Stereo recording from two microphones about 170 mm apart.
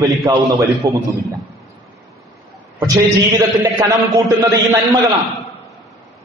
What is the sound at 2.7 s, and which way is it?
A man's voice, 20° right (ahead or behind).